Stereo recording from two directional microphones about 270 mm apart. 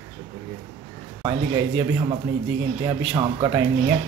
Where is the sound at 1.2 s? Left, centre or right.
Centre.